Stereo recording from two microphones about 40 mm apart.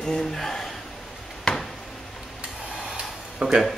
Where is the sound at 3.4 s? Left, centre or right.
Centre.